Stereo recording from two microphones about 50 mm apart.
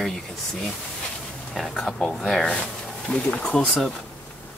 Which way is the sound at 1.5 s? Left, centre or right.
Centre.